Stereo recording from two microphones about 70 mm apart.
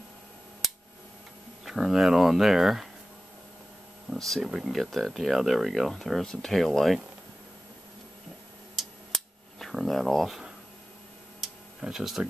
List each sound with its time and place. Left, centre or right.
1.6 s speech: centre
4.1 s speech: centre
8.7 s a sound: centre
11.4 s tick-tock: centre